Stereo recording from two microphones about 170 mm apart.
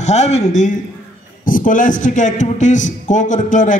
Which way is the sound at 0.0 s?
40° left (ahead or behind).